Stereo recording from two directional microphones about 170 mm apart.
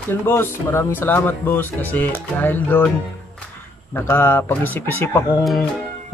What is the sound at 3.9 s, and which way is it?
Speech, 15° left (ahead or behind).